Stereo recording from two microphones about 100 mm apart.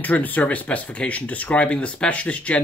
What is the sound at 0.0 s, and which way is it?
Speech, 15° left (ahead or behind).